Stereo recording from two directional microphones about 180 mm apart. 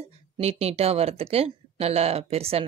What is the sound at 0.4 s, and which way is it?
Speech, 35° right (ahead or behind).